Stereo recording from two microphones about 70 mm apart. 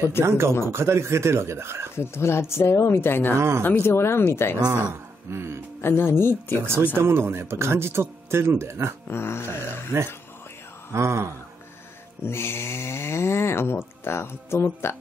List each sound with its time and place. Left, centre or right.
0.2 s a man's voice: right
2.0 s speech: left
3.3 s a man's voice: right
3.6 s speech: left
4.6 s speech: right
5.3 s a man's voice: right
5.8 s speech: left
7.0 s a man's voice: right
9.0 s speech: left
10.9 s a man's voice: right
12.2 s speech: left